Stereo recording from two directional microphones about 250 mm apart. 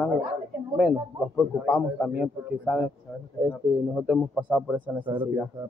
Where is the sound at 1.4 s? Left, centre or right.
Centre.